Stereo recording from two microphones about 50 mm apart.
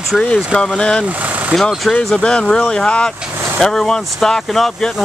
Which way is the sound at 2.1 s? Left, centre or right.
Centre.